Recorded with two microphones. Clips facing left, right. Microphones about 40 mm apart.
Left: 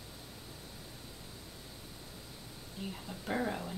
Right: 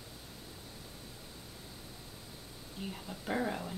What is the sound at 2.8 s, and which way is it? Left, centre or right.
Speech, centre.